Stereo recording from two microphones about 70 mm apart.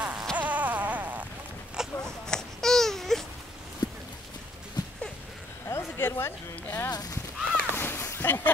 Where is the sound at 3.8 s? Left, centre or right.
Left.